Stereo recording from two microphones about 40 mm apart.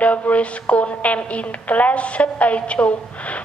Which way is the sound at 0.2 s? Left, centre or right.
Left.